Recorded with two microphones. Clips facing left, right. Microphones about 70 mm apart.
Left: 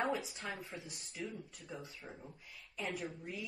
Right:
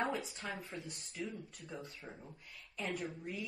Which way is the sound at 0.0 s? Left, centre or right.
Centre.